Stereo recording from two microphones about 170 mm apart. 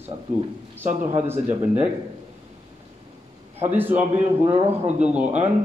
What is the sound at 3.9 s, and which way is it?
A man's voice, 40° right (ahead or behind).